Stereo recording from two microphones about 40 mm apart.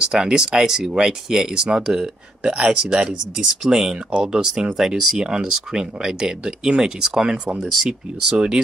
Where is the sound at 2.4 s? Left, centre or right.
Right.